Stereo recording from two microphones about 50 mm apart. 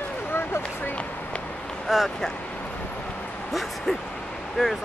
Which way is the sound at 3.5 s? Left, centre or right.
Centre.